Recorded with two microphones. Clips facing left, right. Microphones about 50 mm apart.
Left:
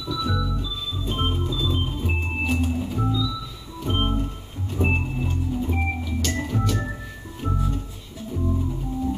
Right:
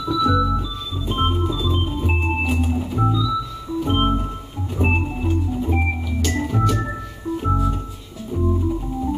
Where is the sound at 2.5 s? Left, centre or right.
Centre.